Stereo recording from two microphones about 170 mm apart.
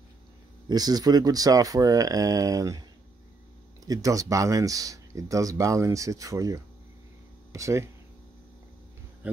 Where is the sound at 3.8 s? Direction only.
20° right (ahead or behind).